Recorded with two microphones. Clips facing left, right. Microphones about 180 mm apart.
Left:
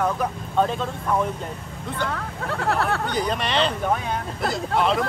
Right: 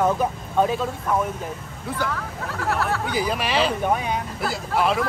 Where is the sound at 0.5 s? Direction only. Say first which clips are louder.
Right 1 dB; 5° right (ahead or behind).